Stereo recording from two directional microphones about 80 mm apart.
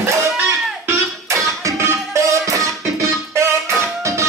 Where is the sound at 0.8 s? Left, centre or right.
Right.